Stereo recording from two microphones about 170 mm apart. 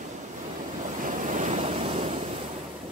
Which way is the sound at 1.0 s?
50° right (ahead or behind).